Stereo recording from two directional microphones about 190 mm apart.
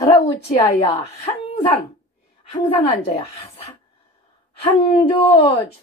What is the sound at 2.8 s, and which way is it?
Speech, 30° left (ahead or behind).